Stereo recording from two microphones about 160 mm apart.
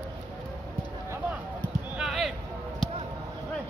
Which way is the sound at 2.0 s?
5° right (ahead or behind).